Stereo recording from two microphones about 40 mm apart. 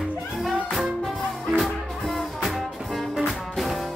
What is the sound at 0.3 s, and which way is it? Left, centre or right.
Music, centre.